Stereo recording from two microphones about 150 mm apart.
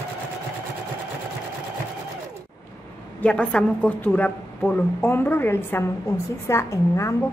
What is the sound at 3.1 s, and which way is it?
A woman's voice, 5° left (ahead or behind).